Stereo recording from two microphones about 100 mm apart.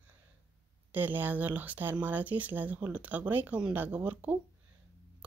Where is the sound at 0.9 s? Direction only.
20° right (ahead or behind).